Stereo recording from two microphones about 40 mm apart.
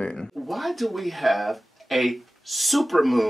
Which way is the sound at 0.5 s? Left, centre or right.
Centre.